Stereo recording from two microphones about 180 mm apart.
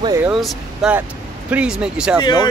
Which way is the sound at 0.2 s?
Centre (ahead or behind).